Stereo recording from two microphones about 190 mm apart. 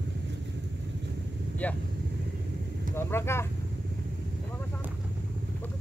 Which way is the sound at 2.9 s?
10° left (ahead or behind).